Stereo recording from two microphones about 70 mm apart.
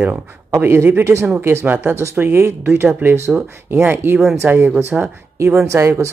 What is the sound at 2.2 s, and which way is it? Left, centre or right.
Speech, centre.